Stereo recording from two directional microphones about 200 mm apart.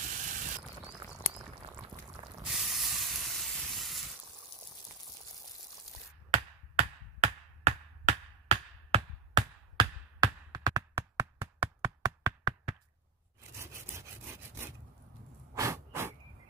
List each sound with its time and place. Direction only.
0.0 s mechanisms: 40° right (ahead or behind)
2.4 s hiss: centre (ahead or behind)
6.3 s chop: 35° right (ahead or behind); by 11.2 s 20° right (ahead or behind)
11.8 s hands: 20° right (ahead or behind)
13.6 s sawing: 15° right (ahead or behind)
15.5 s a sound: 15° right (ahead or behind)